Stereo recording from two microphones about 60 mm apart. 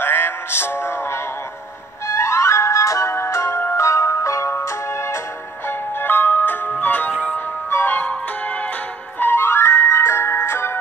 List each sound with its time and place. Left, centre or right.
0.0 s music: left
5.7 s music: left
9.2 s music: left